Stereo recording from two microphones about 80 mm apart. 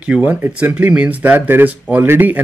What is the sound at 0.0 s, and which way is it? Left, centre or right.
Speech, centre.